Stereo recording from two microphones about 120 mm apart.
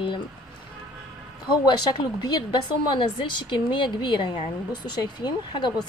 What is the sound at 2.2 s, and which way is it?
A woman's voice, 40° left (ahead or behind).